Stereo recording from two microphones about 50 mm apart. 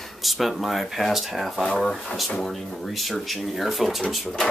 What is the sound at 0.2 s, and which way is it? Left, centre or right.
Speech, centre.